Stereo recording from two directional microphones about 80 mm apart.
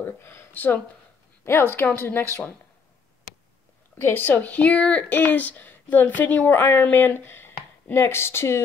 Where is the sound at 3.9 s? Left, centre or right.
Left.